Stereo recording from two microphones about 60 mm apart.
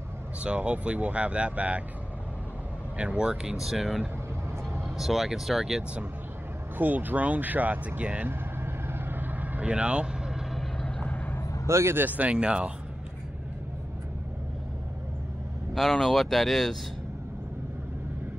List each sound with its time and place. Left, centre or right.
0.4 s speech: right
3.0 s speech: centre
3.5 s speech: centre
6.8 s speech: right
8.8 s vehicle: right
11.0 s vehicle: left
11.6 s speech: right
12.0 s speech: right
12.3 s speech: centre
15.7 s speech: centre